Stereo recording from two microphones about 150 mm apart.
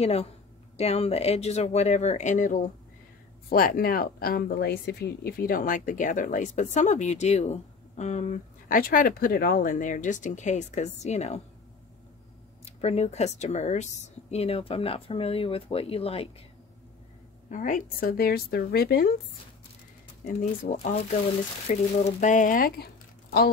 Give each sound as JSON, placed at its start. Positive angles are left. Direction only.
{"t": 0.0, "sound": "speech", "side_deg": 40}
{"t": 3.4, "sound": "speech", "side_deg": 75}
{"t": 12.6, "sound": "speech", "side_deg": 45}
{"t": 17.5, "sound": "speech", "side_deg": 60}
{"t": 20.2, "sound": "speech", "side_deg": 55}